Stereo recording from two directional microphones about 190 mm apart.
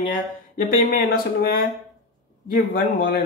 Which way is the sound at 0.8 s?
50° left (ahead or behind).